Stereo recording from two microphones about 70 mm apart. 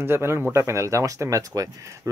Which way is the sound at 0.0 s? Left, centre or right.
Right.